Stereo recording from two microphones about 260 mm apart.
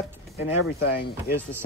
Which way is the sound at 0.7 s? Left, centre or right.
Left.